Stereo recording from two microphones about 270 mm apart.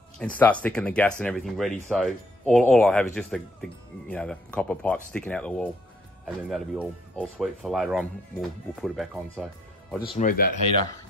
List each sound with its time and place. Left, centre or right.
0.2 s speech: centre
10.0 s speech: left